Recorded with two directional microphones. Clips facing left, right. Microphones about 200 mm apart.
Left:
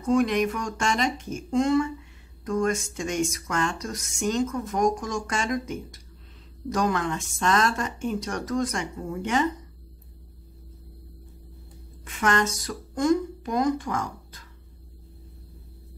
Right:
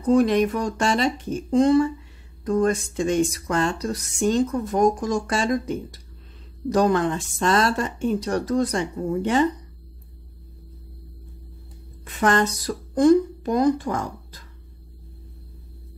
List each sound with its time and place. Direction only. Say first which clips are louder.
0.0 s speech: right 4 dB; 35° right (ahead or behind)
12.0 s speech: right 4 dB; 35° right (ahead or behind)